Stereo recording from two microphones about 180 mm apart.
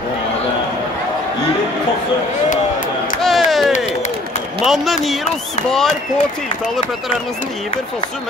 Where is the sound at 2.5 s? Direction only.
45° left (ahead or behind).